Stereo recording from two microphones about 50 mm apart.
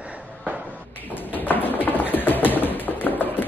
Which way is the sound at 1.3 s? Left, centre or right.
Left.